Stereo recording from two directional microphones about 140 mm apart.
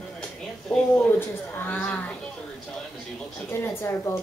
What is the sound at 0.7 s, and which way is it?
Speech, 10° left (ahead or behind).